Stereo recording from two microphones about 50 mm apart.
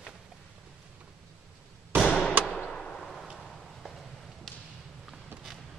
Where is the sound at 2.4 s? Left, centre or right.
Centre.